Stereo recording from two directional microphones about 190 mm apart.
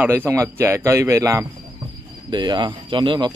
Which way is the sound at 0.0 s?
10° right (ahead or behind).